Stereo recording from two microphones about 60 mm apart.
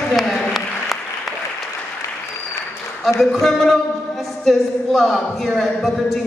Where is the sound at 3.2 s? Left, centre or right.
Centre.